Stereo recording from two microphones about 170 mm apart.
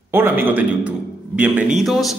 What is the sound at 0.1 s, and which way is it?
A man's voice, 15° right (ahead or behind).